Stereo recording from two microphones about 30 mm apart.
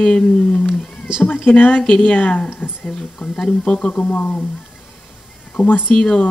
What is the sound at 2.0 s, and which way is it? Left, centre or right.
Speech, left.